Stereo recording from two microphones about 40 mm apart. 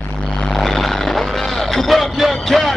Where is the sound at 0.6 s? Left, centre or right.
Centre.